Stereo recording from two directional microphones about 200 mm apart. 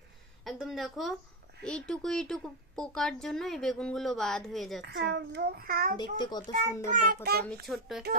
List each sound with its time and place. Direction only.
0.5 s a woman's voice: centre (ahead or behind)
4.8 s a child's voice: 55° right (ahead or behind)
5.9 s a child's voice: 20° left (ahead or behind)
7.4 s speech: centre (ahead or behind)